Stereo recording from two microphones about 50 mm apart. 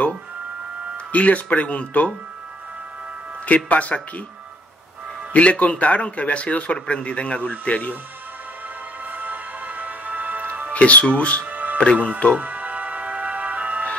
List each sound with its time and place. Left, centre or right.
0.9 s speech: left
3.4 s speech: left
5.3 s speech: left
9.0 s music: right
10.7 s speech: left
11.4 s music: right
11.8 s speech: left
12.4 s music: right